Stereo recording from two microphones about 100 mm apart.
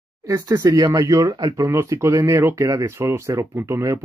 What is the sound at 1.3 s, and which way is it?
Speech, 45° right (ahead or behind).